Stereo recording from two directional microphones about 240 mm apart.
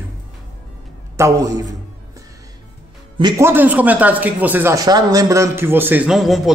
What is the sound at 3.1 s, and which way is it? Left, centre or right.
A man's voice, centre.